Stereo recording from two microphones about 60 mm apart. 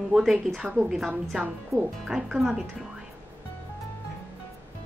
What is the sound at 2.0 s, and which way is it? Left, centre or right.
Speech, centre.